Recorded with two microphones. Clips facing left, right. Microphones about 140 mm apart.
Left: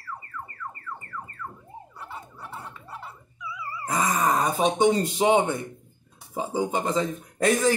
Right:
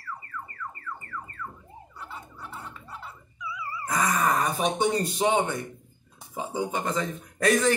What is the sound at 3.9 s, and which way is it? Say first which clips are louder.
Speech: left 1 dB; 20° left (ahead or behind).